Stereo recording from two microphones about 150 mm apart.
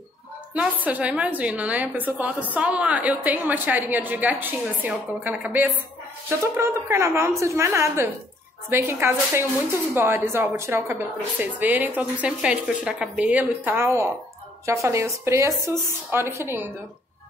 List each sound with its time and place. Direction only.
0.8 s a woman's voice: 10° right (ahead or behind)